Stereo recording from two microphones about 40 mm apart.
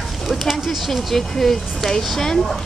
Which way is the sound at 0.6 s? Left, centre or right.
Centre.